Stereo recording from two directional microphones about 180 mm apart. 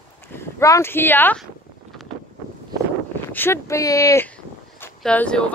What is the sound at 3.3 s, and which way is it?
Speech, 15° left (ahead or behind).